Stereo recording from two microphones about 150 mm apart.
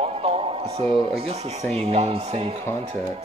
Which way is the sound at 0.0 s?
40° right (ahead or behind).